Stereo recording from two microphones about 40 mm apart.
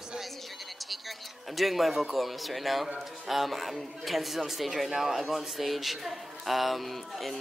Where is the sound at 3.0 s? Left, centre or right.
Centre.